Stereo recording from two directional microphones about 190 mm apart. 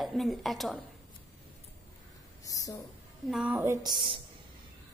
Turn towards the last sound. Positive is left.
turn(degrees=-25)  # may be behind; listen again after turning